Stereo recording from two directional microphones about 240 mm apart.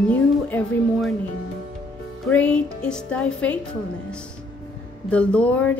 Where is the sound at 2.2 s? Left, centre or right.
Centre.